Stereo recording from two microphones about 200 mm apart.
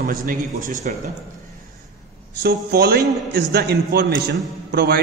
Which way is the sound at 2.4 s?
50° right (ahead or behind).